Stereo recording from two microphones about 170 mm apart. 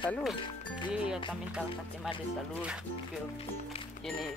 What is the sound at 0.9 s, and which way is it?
Speech, 5° right (ahead or behind).